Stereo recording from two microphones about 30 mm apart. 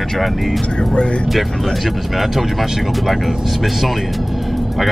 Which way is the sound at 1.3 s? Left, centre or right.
Centre.